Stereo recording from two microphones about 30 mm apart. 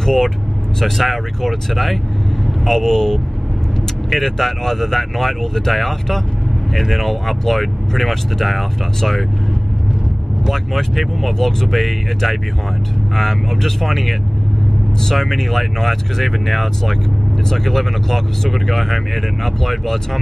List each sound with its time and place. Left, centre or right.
0.0 s speech: centre
2.8 s speech: centre
10.5 s speech: centre